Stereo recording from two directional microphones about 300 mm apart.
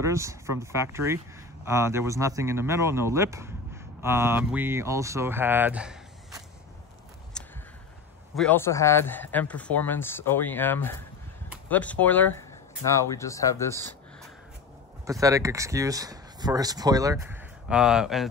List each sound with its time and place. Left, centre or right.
0.0 s speech: centre
7.3 s a sound: centre
8.4 s speech: centre
15.0 s speech: centre